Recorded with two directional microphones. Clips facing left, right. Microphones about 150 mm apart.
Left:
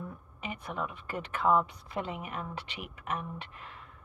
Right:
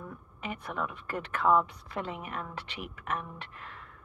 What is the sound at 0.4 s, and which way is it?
A woman's voice, 5° left (ahead or behind).